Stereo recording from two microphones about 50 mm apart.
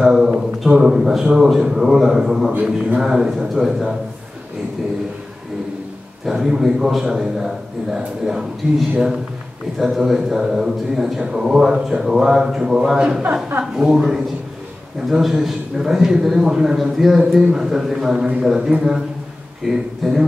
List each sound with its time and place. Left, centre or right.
0.0 s a sound: centre
0.8 s speech: centre
6.2 s speech: centre
9.8 s speech: centre
19.6 s speech: centre